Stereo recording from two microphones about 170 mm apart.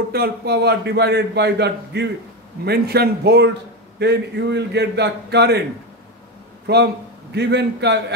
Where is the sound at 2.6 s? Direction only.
70° right (ahead or behind).